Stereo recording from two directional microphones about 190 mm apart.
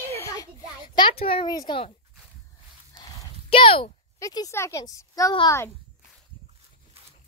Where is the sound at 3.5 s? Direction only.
30° left (ahead or behind).